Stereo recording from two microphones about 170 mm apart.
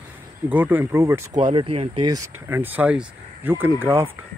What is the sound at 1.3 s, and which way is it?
Speech, 30° right (ahead or behind).